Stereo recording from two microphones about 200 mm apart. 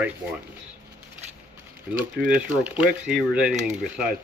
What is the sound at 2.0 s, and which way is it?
Speech, 5° right (ahead or behind).